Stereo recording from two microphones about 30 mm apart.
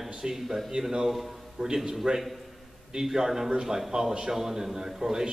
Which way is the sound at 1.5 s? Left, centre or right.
Right.